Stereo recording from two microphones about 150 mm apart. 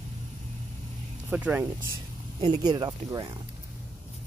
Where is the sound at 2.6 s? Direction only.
25° right (ahead or behind).